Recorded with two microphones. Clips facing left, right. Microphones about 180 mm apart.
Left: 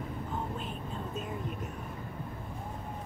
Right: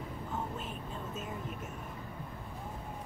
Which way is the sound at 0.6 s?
Centre (ahead or behind).